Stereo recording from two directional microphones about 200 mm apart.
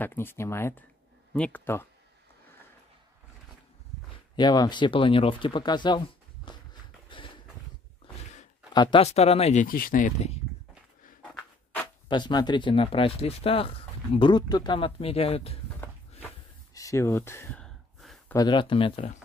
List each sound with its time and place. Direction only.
0.0 s speech: 10° left (ahead or behind)
4.4 s speech: 20° left (ahead or behind)
7.1 s a sound: 25° left (ahead or behind)
8.7 s speech: 25° left (ahead or behind)
12.1 s speech: 20° left (ahead or behind)
16.7 s a sound: 15° left (ahead or behind)
18.3 s speech: 20° left (ahead or behind)